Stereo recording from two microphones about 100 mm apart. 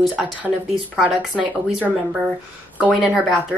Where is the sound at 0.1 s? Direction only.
15° right (ahead or behind).